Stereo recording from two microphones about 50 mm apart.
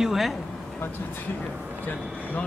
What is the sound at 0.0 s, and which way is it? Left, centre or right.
Speech, centre.